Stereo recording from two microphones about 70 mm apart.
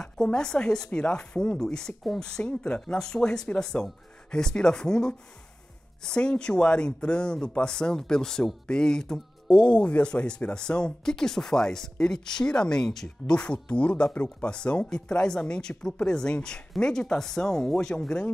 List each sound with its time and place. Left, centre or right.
0.0 s speech: centre